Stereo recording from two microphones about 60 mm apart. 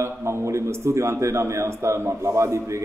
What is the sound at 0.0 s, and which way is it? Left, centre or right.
A man's voice, right.